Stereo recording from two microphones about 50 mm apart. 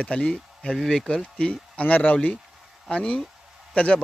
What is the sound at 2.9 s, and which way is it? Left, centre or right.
A man's voice, centre.